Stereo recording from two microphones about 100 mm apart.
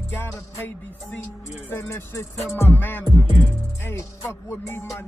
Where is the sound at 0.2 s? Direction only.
20° left (ahead or behind).